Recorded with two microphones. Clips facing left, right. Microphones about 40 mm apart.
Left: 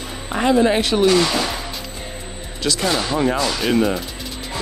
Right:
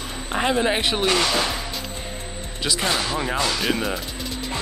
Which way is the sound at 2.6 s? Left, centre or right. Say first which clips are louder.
Left 3 dB; centre.